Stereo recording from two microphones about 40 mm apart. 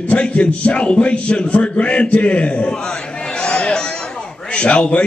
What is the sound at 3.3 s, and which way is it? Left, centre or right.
Chatter, left.